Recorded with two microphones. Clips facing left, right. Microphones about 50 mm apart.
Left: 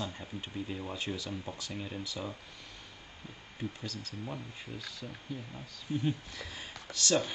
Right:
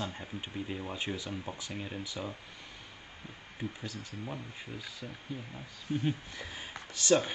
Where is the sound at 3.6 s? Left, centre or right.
Centre.